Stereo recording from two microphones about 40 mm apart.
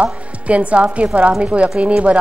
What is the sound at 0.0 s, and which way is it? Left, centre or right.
A woman's voice, right.